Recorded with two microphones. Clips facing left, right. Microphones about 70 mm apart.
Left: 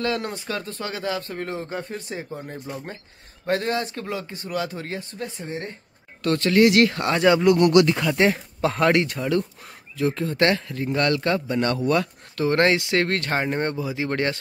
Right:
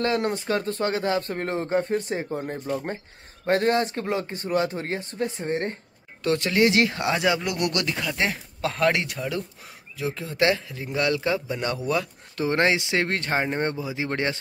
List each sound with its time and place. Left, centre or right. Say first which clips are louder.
0.0 s speech: right 2 dB; right
6.2 s speech: left 3 dB; centre
12.4 s speech: left 3 dB; centre